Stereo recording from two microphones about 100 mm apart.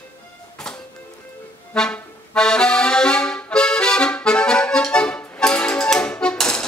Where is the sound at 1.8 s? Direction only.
5° left (ahead or behind).